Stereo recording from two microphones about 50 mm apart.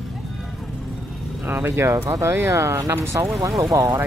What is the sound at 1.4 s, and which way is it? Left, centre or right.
Speech, right.